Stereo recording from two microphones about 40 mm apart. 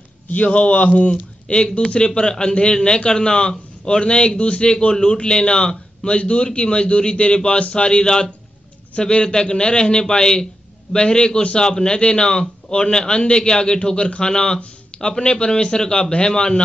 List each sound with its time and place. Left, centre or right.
0.3 s a man's voice: left
1.1 s a man's voice: left